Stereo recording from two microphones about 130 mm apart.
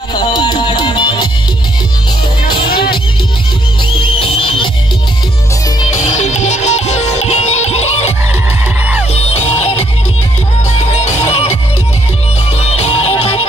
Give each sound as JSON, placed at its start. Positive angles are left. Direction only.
{"t": 0.1, "sound": "music", "side_deg": 35}
{"t": 2.5, "sound": "music", "side_deg": 40}
{"t": 4.0, "sound": "music", "side_deg": 45}
{"t": 5.9, "sound": "music", "side_deg": 70}
{"t": 9.1, "sound": "music", "side_deg": 55}
{"t": 12.5, "sound": "music", "side_deg": 55}